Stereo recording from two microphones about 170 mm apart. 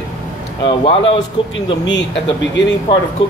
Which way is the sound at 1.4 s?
30° left (ahead or behind).